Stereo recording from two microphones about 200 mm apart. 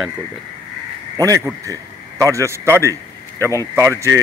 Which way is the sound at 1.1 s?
15° right (ahead or behind).